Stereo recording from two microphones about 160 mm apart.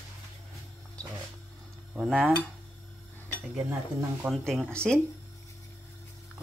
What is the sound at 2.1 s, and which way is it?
Speech, centre (ahead or behind).